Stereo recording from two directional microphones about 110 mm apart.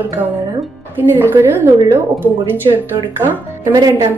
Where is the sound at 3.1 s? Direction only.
20° right (ahead or behind).